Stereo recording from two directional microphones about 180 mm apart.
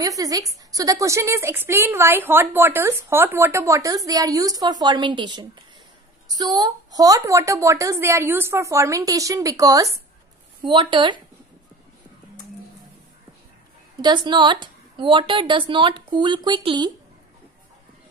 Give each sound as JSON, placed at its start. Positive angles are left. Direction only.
{"t": 0.0, "sound": "a woman's voice", "side_deg": -20}
{"t": 14.0, "sound": "a woman's voice", "side_deg": -25}